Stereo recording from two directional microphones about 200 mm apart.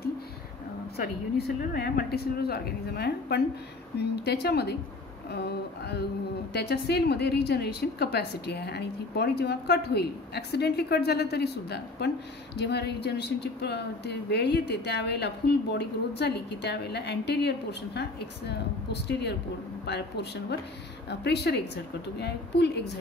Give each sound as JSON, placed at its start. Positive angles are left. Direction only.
{"t": 1.6, "sound": "a woman's voice", "side_deg": 50}